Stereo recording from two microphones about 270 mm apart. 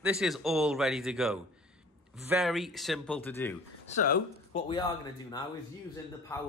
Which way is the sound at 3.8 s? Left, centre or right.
Left.